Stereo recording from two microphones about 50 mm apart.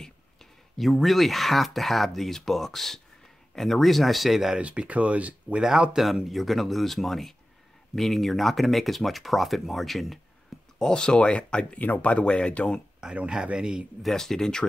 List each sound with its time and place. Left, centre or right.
0.0 s speech: centre
4.6 s speech: right
6.2 s speech: centre
10.8 s speech: centre
13.0 s a man's voice: right
14.0 s speech: centre